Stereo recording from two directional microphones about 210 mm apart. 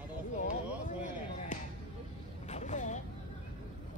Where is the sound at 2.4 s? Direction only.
35° left (ahead or behind).